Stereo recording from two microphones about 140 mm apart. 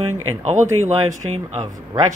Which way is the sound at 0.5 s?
55° right (ahead or behind).